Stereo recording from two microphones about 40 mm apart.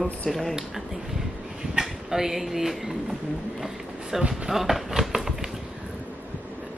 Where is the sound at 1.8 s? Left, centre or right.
Centre.